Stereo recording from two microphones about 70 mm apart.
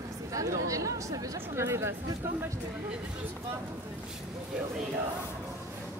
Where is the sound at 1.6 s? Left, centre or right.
Right.